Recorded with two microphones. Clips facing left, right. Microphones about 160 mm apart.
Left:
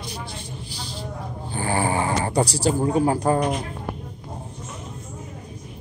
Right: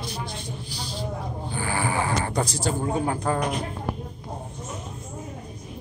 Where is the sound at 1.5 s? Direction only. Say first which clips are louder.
Left 4 dB; 30° left (ahead or behind).